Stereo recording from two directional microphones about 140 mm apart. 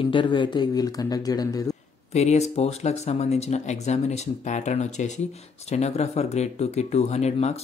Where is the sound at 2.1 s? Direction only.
55° left (ahead or behind).